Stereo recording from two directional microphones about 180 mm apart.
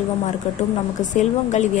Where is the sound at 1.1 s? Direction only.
40° left (ahead or behind).